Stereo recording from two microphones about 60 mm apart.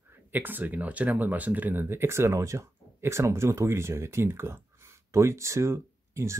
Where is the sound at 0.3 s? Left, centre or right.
Right.